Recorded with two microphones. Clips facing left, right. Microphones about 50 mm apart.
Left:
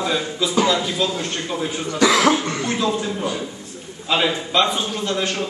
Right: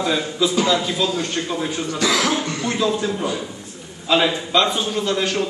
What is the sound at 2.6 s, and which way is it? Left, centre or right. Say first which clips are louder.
A man's voice: right 5 dB; centre.